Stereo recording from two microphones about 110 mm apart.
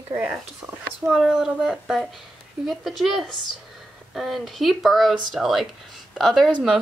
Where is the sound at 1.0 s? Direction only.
5° right (ahead or behind).